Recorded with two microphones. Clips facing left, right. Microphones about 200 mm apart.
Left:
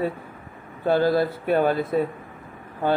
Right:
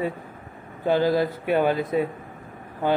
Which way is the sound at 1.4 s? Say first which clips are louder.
Left 1 dB; 45° left (ahead or behind).